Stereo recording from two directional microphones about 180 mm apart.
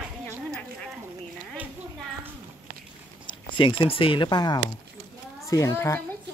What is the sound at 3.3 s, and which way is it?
Speech, 30° left (ahead or behind).